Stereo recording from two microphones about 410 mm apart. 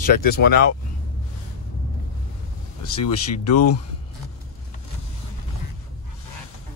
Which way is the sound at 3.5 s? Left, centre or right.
Left.